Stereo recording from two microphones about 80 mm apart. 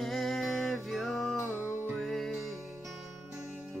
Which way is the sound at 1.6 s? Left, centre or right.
Right.